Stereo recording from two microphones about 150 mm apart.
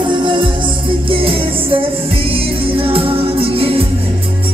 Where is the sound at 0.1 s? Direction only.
35° right (ahead or behind).